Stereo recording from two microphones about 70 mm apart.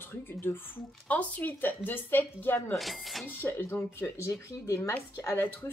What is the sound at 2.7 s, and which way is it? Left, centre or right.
Speech, centre.